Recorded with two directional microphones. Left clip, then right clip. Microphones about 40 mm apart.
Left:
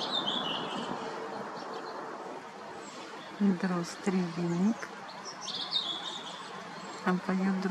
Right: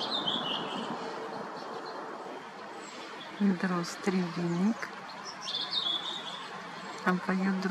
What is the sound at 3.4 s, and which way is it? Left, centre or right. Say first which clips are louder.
A man's voice: right 1 dB; right.